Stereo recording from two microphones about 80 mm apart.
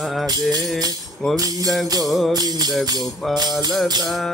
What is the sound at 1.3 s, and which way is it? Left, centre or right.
Speech, right.